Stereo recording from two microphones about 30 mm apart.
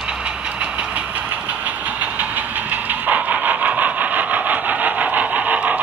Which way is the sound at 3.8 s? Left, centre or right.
Right.